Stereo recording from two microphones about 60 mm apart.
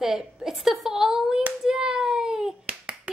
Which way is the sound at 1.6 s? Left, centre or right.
Centre.